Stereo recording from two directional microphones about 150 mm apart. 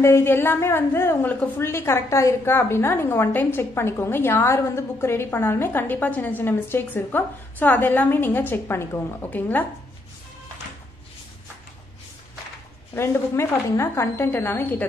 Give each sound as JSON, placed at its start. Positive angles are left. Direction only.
{"t": 0.0, "sound": "a woman's voice", "side_deg": 15}
{"t": 12.9, "sound": "a woman's voice", "side_deg": 15}